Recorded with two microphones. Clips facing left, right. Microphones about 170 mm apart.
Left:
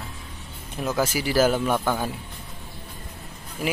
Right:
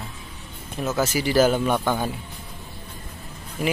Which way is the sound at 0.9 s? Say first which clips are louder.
Right 1 dB; 10° left (ahead or behind).